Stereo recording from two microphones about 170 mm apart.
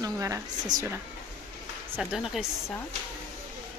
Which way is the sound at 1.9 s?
Centre (ahead or behind).